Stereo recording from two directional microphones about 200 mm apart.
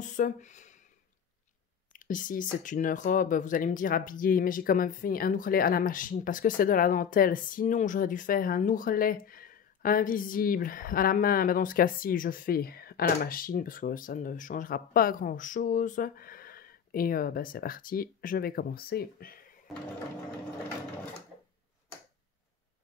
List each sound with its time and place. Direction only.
0.0 s speech: 40° left (ahead or behind)
1.9 s a sound: 40° left (ahead or behind)
2.6 s speech: 40° left (ahead or behind)